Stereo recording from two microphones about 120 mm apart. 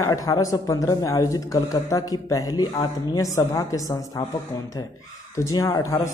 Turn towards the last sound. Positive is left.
turn(degrees=30)  # may be behind; listen again after turning